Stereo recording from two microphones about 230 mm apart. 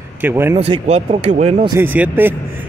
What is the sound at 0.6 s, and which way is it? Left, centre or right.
Speech, right.